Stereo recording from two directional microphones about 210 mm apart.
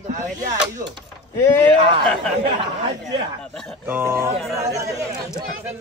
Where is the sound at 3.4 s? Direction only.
5° left (ahead or behind).